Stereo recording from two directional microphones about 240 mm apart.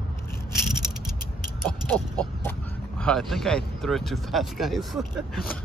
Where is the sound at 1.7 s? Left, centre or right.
Centre.